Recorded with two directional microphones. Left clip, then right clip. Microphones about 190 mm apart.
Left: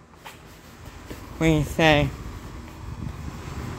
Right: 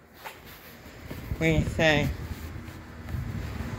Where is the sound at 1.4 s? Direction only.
40° left (ahead or behind).